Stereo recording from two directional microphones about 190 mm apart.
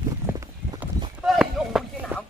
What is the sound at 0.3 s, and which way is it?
Clip-clop, 15° right (ahead or behind).